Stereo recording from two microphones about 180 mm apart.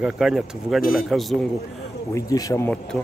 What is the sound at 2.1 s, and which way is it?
Speech, 20° left (ahead or behind).